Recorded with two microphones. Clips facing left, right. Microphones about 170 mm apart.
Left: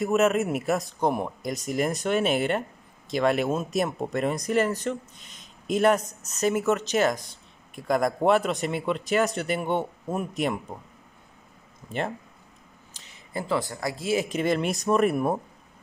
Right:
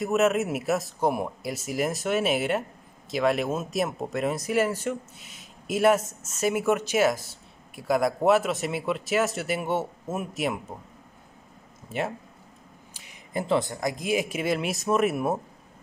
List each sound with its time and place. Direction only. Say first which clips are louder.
0.0 s speech: left 1 dB; centre (ahead or behind)
12.9 s speech: right 2 dB; 10° right (ahead or behind)